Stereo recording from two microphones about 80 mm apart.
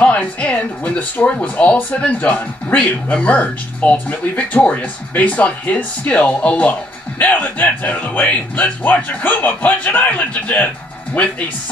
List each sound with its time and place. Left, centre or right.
0.0 s speech: centre